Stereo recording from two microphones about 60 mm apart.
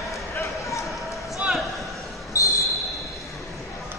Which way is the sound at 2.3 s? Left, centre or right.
Left.